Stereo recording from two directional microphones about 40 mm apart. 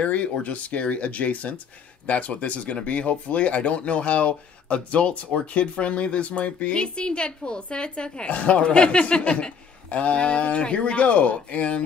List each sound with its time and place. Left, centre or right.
0.0 s speech: left